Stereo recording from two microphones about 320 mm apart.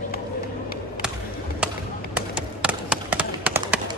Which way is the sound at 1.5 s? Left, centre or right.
Centre.